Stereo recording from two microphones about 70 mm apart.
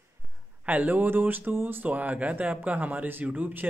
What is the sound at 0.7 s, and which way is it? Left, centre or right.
Speech, right.